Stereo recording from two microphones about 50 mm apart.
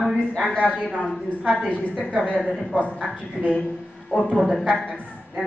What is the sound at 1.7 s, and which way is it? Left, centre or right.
Speech, left.